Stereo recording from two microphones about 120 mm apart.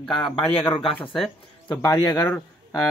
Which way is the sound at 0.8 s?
45° left (ahead or behind).